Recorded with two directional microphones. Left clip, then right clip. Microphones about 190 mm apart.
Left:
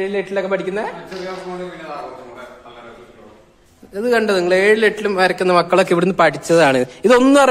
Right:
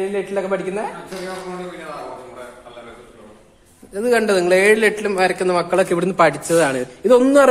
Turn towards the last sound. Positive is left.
turn(degrees=25)  # may be behind; listen again after turning